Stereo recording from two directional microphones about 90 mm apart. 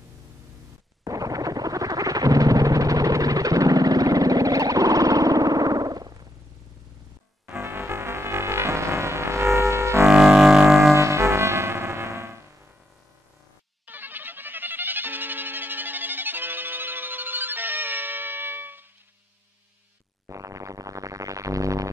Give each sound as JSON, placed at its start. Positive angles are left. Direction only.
{"t": 1.0, "sound": "synthesizer", "side_deg": -40}
{"t": 7.4, "sound": "music", "side_deg": -25}
{"t": 10.0, "sound": "music", "side_deg": -5}
{"t": 11.0, "sound": "music", "side_deg": -30}
{"t": 13.8, "sound": "music", "side_deg": -20}
{"t": 20.2, "sound": "music", "side_deg": -35}